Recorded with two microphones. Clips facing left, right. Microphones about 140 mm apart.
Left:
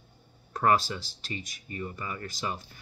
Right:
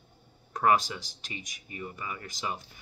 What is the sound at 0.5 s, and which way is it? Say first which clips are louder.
Speech: even; 15° right (ahead or behind).